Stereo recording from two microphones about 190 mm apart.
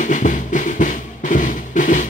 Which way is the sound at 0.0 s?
40° left (ahead or behind).